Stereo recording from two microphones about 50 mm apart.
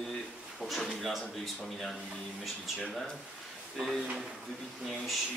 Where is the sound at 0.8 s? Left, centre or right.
Centre.